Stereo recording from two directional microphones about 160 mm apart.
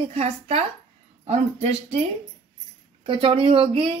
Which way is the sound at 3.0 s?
35° right (ahead or behind).